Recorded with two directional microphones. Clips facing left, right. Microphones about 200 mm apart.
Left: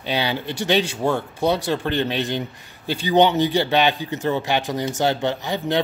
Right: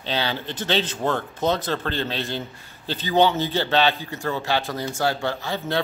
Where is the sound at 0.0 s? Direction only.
15° left (ahead or behind).